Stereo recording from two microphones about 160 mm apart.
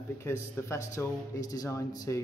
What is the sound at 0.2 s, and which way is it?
A man's voice, 15° left (ahead or behind).